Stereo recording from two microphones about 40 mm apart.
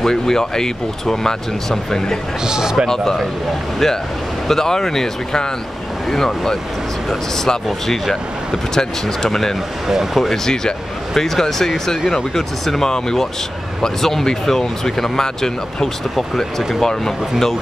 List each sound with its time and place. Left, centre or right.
0.0 s speech: centre
2.4 s speech: centre
2.9 s speech: centre
4.5 s speech: centre
9.8 s speech: centre
10.4 s speech: centre